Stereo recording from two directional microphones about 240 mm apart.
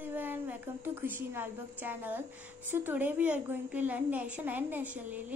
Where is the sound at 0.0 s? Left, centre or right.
Centre.